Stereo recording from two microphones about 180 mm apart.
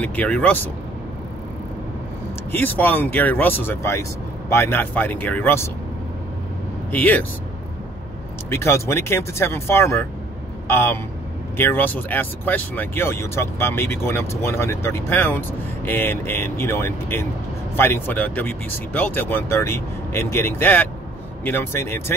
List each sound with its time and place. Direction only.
0.0 s speech: 10° left (ahead or behind)
2.5 s speech: 10° left (ahead or behind)
6.9 s speech: 10° left (ahead or behind)
8.5 s speech: 15° left (ahead or behind)